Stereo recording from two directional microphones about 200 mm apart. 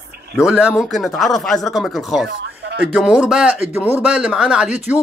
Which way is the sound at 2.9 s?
5° right (ahead or behind).